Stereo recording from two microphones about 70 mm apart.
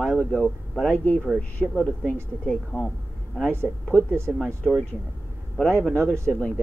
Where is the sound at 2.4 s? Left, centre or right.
Centre.